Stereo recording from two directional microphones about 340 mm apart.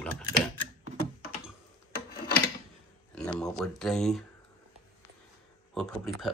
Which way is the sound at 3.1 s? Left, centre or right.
Centre.